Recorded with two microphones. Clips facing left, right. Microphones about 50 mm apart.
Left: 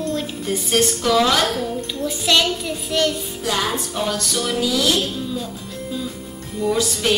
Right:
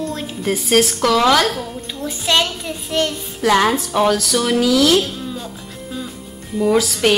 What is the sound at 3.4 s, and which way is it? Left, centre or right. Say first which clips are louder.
A woman's voice: right 9 dB; right.